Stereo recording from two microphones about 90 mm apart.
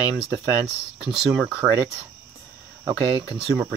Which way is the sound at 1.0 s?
5° right (ahead or behind).